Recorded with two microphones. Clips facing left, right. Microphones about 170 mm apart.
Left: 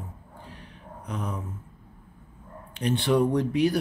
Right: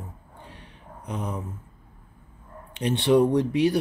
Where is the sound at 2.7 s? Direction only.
25° right (ahead or behind).